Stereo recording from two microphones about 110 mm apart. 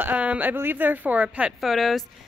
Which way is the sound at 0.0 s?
15° right (ahead or behind).